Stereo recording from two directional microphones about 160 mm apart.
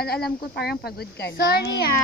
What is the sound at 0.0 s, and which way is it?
A child's voice, 80° left.